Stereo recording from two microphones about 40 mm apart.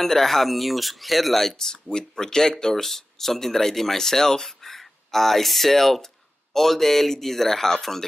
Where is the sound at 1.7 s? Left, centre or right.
Centre.